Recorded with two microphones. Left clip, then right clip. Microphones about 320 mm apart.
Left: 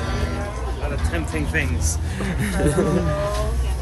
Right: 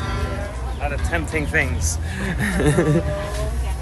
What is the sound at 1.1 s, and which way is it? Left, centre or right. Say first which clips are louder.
Speech: right 4 dB; centre.